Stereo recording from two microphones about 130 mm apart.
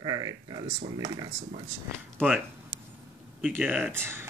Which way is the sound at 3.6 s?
15° right (ahead or behind).